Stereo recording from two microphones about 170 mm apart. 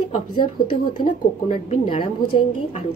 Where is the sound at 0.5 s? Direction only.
55° left (ahead or behind).